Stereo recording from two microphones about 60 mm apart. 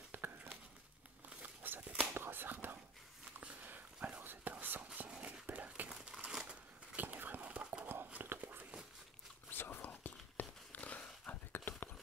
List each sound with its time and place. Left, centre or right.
0.1 s a sound: right
1.4 s crumpling: right
2.1 s whispering: right
4.9 s dog: right
5.9 s crumpling: centre
6.4 s a sound: centre
7.0 s horse: right
8.1 s whispering: right
9.5 s whispering: left
10.7 s dog: left
11.5 s horse: left